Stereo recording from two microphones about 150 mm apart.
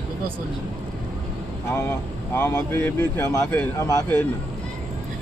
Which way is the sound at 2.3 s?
15° left (ahead or behind).